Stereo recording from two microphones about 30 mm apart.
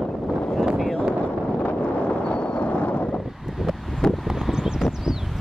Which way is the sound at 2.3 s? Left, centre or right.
Left.